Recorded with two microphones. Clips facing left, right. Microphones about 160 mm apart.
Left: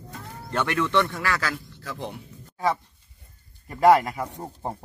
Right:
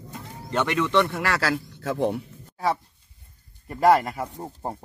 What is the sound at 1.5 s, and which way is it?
Speech, 50° right (ahead or behind).